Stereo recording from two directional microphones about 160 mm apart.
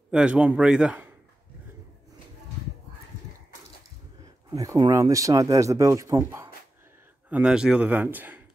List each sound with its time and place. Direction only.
0.1 s a man's voice: 5° right (ahead or behind)
4.6 s a man's voice: 25° right (ahead or behind)